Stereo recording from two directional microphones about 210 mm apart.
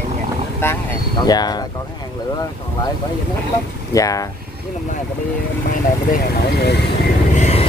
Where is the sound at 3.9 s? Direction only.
15° left (ahead or behind).